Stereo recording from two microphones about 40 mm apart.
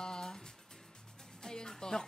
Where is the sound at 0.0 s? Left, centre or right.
Centre.